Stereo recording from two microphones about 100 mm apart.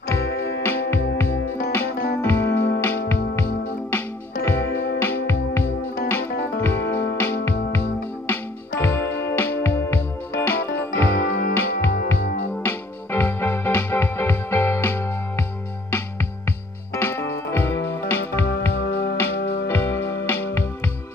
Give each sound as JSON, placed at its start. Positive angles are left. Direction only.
{"t": 0.1, "sound": "music", "side_deg": 25}
{"t": 4.5, "sound": "music", "side_deg": 25}
{"t": 16.9, "sound": "music", "side_deg": 25}
{"t": 19.7, "sound": "music", "side_deg": 25}